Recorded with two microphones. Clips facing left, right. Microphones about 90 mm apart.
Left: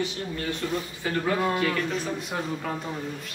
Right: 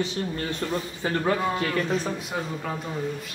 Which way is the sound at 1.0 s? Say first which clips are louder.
Right 2 dB; 30° right (ahead or behind).